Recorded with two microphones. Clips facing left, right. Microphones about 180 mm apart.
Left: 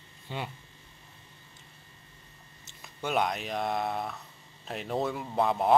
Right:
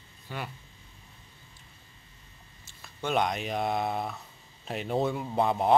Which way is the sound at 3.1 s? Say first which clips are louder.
Right 1 dB; centre (ahead or behind).